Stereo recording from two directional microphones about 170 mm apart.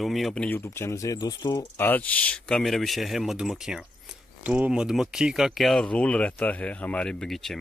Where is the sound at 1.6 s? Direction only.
10° left (ahead or behind).